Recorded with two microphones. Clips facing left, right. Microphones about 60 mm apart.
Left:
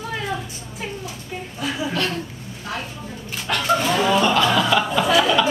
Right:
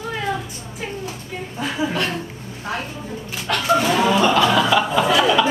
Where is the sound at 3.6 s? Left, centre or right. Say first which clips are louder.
Right 2 dB; centre.